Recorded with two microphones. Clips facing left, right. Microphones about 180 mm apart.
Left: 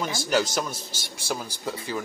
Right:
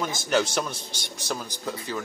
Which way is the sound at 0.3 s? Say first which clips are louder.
Right 1 dB; 5° left (ahead or behind).